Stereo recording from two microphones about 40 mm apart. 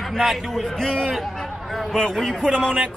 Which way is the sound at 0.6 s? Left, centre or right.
Centre.